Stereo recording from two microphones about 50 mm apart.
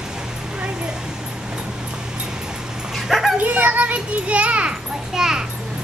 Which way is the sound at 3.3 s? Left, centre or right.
Right.